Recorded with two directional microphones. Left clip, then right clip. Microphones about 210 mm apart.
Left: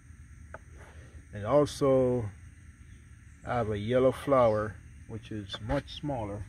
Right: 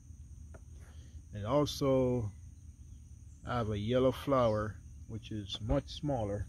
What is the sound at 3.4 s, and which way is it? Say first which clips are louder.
Speech: left 5 dB; centre (ahead or behind).